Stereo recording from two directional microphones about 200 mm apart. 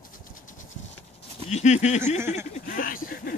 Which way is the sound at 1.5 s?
35° left (ahead or behind).